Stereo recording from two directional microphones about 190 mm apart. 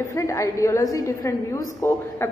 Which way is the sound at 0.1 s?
15° left (ahead or behind).